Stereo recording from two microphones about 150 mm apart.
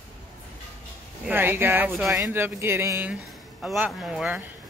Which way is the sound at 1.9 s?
Centre (ahead or behind).